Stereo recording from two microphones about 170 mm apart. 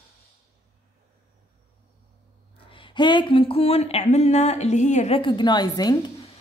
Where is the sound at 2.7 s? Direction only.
30° left (ahead or behind).